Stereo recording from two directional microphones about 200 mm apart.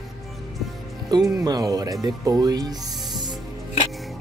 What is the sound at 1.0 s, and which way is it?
Speech, 15° right (ahead or behind).